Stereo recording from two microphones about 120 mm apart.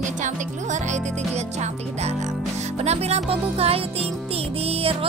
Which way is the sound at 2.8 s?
65° right (ahead or behind).